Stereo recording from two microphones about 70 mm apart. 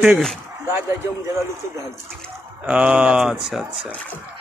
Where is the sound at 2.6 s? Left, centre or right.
Centre.